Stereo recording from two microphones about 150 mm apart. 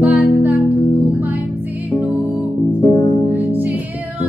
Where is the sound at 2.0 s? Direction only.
10° right (ahead or behind).